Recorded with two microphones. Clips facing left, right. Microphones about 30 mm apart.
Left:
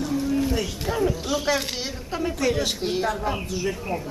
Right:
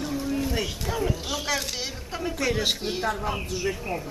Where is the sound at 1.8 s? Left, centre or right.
Centre.